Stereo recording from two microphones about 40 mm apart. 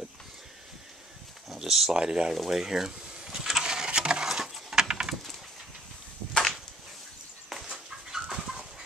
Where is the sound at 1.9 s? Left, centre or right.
Right.